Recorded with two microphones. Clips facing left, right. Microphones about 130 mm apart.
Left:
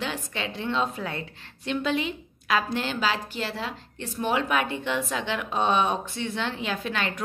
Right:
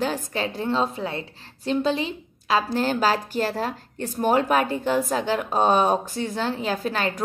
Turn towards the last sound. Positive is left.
turn(degrees=-35)  # may be behind; listen again after turning